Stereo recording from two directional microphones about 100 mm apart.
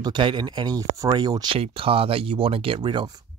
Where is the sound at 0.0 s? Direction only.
50° right (ahead or behind).